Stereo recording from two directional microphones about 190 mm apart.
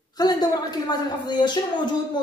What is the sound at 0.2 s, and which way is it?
Speech, 20° left (ahead or behind).